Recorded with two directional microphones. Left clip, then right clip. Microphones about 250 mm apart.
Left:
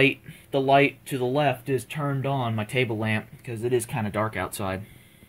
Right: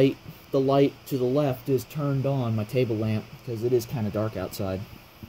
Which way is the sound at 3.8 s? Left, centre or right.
Centre.